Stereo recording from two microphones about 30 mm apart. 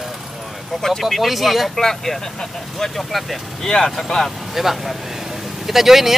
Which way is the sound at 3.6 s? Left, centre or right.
Left.